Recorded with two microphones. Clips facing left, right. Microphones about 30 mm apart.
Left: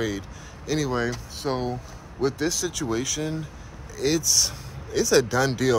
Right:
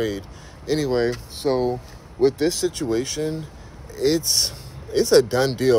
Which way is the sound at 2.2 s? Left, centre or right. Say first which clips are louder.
Right 6 dB; right.